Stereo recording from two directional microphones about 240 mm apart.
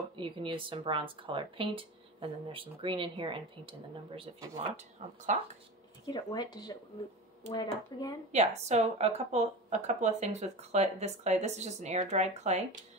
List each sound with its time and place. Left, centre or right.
0.2 s speech: right
6.0 s speech: centre
7.9 s speech: centre
8.3 s speech: right